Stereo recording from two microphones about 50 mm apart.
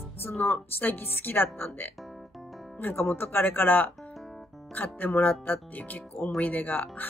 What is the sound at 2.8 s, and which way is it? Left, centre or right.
Speech, left.